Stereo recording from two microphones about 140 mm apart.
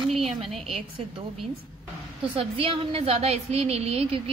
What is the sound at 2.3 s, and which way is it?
A woman's voice, 40° right (ahead or behind).